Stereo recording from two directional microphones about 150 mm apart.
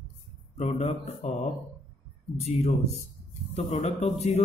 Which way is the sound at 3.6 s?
50° left (ahead or behind).